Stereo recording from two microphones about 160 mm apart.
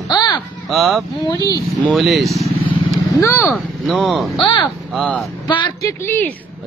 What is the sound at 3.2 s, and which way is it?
Speech, 15° left (ahead or behind).